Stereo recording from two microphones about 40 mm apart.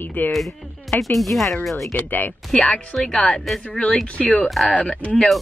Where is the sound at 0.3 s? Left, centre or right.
Centre.